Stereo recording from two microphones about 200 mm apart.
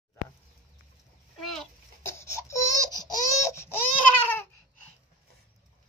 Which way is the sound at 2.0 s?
15° left (ahead or behind).